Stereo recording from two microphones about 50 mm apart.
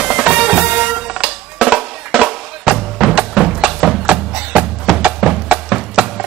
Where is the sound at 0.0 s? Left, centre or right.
Right.